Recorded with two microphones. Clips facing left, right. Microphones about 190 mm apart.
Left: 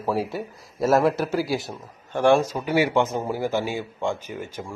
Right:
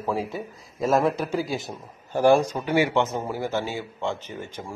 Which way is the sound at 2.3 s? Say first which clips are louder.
Even; 5° left (ahead or behind).